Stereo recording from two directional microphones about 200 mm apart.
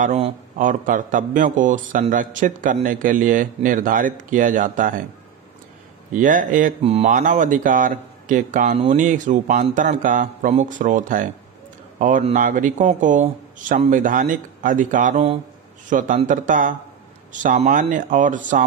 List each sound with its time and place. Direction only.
0.0 s a man's voice: 35° right (ahead or behind)
6.1 s a man's voice: 40° right (ahead or behind)